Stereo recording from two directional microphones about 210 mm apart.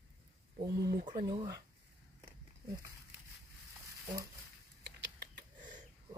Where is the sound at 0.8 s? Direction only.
45° right (ahead or behind).